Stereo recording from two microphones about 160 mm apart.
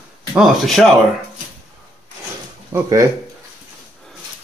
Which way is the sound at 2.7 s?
20° right (ahead or behind).